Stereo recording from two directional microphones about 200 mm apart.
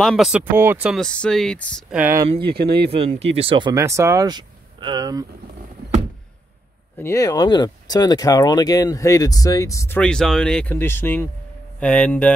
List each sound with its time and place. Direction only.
0.0 s speech: centre (ahead or behind)
1.0 s speech: 5° left (ahead or behind)
2.0 s speech: 10° right (ahead or behind)
2.4 s speech: 50° right (ahead or behind)
2.9 s speech: 30° right (ahead or behind)
7.0 s speech: 15° left (ahead or behind)